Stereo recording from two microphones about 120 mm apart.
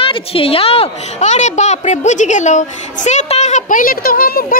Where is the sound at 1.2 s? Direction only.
80° left.